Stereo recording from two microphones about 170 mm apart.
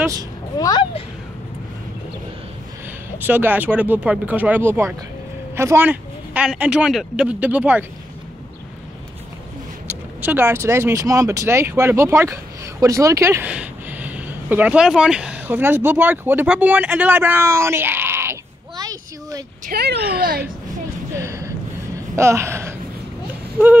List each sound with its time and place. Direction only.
0.6 s a sound: 20° left (ahead or behind)
3.3 s speech: 10° right (ahead or behind)
9.8 s speech: 10° right (ahead or behind)
19.6 s speech: 70° right (ahead or behind)
20.2 s speech: 60° right (ahead or behind)
21.2 s a sound: 15° right (ahead or behind)